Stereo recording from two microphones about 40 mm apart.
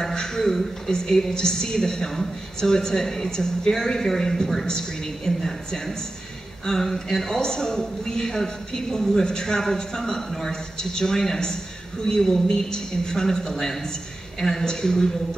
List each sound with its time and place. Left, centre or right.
0.0 s a man's voice: centre